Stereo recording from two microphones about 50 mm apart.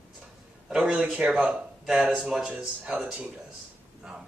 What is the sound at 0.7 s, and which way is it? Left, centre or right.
Speech, centre.